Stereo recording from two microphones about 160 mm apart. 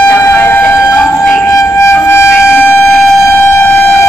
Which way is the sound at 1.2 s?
10° left (ahead or behind).